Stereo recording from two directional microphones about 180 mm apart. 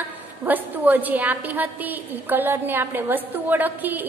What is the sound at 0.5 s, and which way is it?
A woman's voice, 10° right (ahead or behind).